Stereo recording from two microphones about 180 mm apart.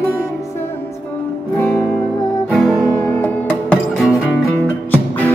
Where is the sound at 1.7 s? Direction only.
Centre (ahead or behind).